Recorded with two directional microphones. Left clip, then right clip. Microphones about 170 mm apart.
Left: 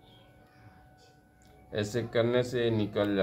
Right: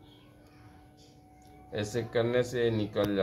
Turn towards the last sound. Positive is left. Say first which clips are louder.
# left 1 dB
turn(degrees=20)  # may be behind; listen again after turning